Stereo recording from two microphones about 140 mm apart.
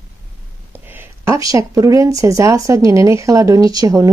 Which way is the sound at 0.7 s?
15° right (ahead or behind).